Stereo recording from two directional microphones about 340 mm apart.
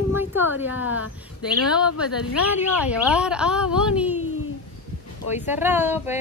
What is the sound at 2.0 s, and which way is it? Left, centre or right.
Speech, left.